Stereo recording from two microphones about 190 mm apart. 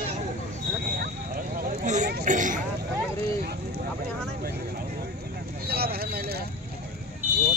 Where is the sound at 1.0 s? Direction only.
50° right (ahead or behind).